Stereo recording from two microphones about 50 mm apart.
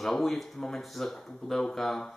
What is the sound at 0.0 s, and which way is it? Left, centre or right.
Speech, centre.